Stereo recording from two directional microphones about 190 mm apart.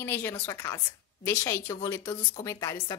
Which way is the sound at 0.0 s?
10° left (ahead or behind).